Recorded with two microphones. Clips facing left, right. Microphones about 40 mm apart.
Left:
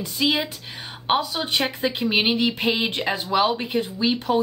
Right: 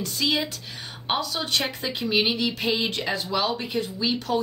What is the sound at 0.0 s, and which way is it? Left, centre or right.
Speech, centre.